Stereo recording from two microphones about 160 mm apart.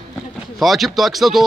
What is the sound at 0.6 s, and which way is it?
Speech, centre (ahead or behind).